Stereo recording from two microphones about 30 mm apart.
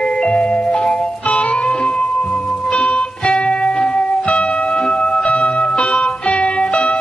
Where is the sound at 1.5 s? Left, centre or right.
Left.